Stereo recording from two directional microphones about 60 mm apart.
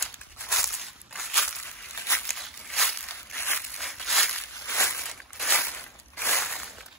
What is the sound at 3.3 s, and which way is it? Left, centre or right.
Walk, left.